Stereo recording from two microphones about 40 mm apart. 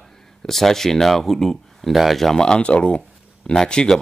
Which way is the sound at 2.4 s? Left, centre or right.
Left.